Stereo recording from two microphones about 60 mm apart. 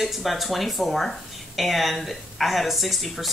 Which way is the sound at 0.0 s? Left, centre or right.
Centre.